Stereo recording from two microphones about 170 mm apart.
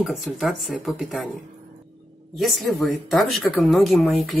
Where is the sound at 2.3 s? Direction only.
Centre (ahead or behind).